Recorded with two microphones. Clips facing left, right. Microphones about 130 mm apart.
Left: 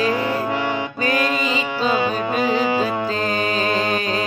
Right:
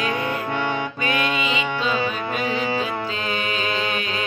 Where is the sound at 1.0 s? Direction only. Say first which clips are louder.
Left 4 dB; 40° left (ahead or behind).